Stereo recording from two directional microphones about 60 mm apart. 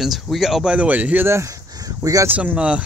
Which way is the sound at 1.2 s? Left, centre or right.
Right.